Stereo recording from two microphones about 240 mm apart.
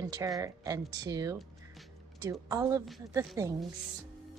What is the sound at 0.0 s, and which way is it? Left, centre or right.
Speech, centre.